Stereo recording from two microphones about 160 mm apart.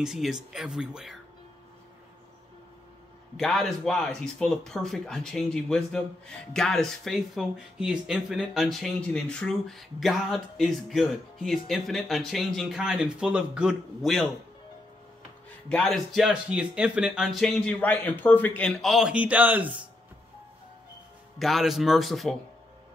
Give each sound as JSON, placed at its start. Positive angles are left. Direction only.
{"t": 0.0, "sound": "speech", "side_deg": -5}
{"t": 3.3, "sound": "speech", "side_deg": 0}
{"t": 15.7, "sound": "speech", "side_deg": 0}
{"t": 21.4, "sound": "speech", "side_deg": 0}